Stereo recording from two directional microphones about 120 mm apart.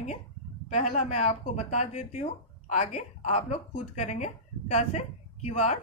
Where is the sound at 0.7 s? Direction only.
85° left.